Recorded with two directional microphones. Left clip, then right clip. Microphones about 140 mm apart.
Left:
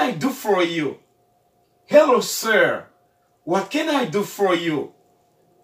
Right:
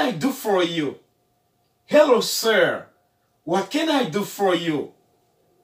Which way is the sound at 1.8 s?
15° left (ahead or behind).